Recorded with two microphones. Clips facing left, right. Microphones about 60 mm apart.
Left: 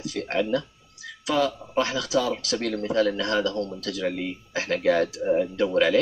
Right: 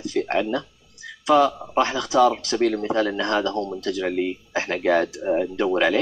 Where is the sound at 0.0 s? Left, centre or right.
Right.